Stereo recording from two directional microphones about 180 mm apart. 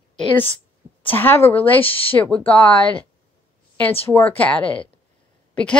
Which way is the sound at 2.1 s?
5° left (ahead or behind).